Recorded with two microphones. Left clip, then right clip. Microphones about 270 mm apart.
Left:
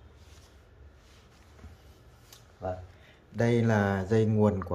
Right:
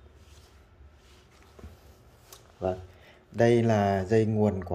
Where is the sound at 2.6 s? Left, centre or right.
Right.